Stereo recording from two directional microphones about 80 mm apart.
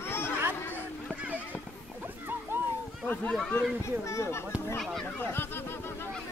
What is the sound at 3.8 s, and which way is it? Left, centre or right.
Speech, left.